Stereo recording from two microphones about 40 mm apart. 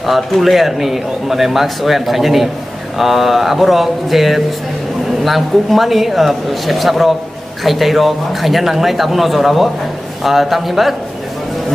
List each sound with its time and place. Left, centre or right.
0.0 s a man's voice: centre